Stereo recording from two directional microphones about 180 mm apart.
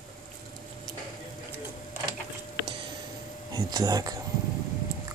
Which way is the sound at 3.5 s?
20° right (ahead or behind).